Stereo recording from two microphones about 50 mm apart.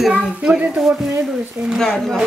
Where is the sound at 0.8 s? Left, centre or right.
Centre.